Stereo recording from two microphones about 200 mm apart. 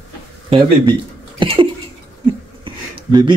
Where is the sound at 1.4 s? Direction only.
25° right (ahead or behind).